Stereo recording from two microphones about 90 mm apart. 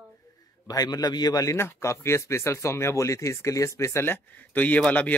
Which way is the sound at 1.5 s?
30° left (ahead or behind).